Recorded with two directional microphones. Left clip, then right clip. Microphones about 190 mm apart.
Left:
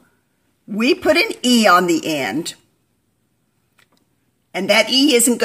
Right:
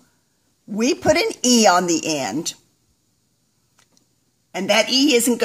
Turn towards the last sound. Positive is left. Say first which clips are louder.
# left 2 dB
turn(degrees=5)  # may be behind; listen again after turning